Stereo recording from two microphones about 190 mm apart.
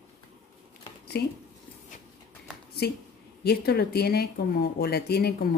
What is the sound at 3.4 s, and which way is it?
Speech, 55° left (ahead or behind).